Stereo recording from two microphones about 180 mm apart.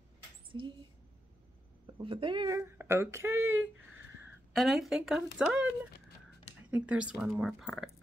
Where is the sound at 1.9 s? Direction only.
30° right (ahead or behind).